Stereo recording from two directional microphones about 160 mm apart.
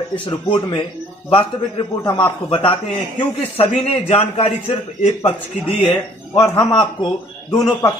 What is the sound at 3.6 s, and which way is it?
A man's voice, 40° left (ahead or behind).